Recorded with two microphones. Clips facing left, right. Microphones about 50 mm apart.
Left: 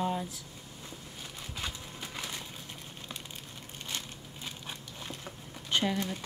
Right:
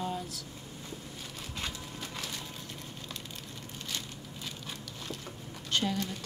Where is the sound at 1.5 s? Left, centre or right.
Centre.